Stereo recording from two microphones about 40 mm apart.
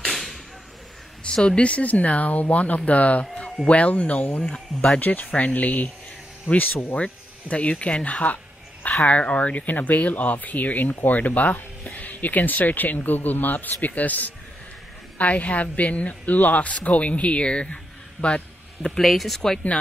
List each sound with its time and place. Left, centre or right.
0.1 s a sound: centre
1.2 s speech: left
4.4 s speech: left
5.0 s speech: left
7.0 s speech: left
18.2 s a sound: left
18.9 s speech: centre